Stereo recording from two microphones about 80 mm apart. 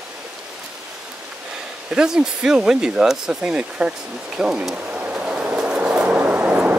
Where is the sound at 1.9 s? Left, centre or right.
Centre.